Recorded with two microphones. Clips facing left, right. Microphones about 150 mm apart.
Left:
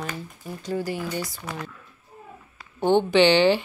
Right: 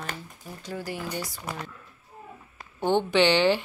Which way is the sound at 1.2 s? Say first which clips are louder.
Left 2 dB; 10° right (ahead or behind).